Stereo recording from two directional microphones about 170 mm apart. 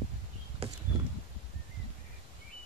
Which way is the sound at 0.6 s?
35° right (ahead or behind).